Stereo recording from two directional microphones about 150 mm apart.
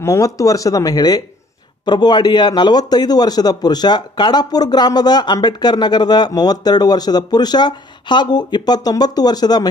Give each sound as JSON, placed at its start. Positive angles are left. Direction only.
{"t": 0.0, "sound": "a man's voice", "side_deg": 20}